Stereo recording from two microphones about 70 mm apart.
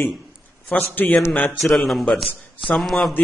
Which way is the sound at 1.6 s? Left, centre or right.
Centre.